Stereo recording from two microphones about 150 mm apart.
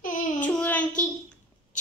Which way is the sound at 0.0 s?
60° left (ahead or behind).